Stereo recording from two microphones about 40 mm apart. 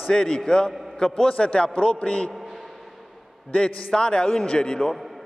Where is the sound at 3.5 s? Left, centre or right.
Left.